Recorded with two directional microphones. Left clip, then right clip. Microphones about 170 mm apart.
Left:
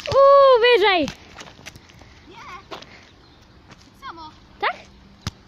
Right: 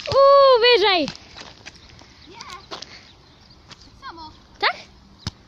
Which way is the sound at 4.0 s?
5° left (ahead or behind).